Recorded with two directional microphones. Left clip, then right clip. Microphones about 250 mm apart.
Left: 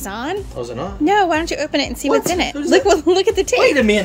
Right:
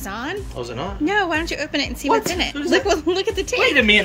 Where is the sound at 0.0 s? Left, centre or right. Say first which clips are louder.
Left 4 dB; centre.